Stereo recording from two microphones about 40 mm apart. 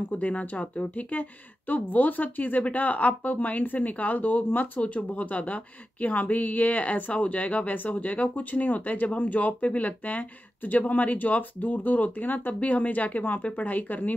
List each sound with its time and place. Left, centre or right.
0.1 s speech: left